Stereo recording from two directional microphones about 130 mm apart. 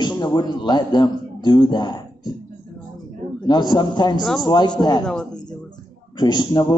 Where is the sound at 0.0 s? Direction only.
35° left (ahead or behind).